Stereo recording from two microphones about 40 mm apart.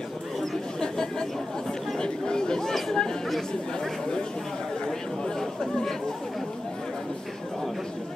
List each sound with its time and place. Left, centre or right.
2.0 s chatter: left
2.7 s speech: centre
4.8 s a sound: centre